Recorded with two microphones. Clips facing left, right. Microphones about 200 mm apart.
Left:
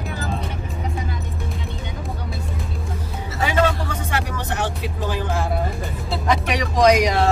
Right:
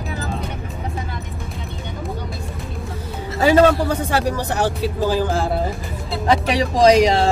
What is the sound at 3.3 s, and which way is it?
Music, 35° right (ahead or behind).